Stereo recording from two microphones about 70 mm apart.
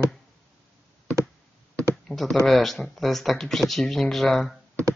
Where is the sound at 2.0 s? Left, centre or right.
Centre.